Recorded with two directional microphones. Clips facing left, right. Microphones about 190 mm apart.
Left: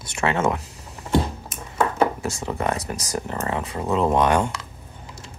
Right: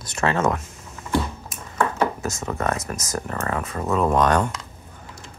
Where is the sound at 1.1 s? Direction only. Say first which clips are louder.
Left 2 dB; 25° left (ahead or behind).